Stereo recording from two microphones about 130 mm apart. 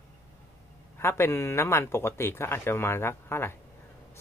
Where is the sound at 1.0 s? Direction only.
20° left (ahead or behind).